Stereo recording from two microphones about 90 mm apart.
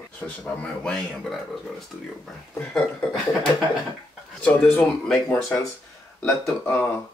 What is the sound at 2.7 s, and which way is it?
Speech, 5° left (ahead or behind).